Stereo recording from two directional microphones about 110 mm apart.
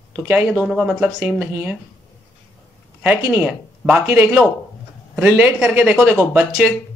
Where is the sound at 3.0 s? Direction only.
15° right (ahead or behind).